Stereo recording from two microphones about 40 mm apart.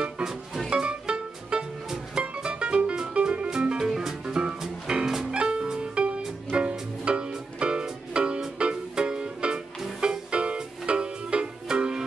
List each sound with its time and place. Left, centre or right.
0.7 s music: right